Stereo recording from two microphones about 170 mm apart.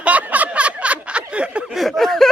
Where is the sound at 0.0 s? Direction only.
10° right (ahead or behind).